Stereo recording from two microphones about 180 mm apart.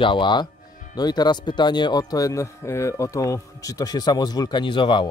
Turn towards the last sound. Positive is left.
turn(degrees=25)  # may be behind; listen again after turning